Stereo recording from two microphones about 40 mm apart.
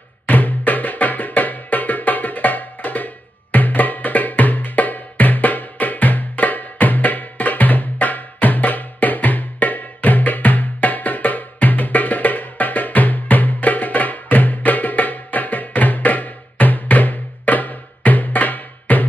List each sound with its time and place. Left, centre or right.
0.3 s music: left